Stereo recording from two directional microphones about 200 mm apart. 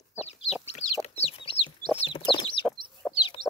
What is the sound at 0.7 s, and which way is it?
Chicken, 35° left (ahead or behind).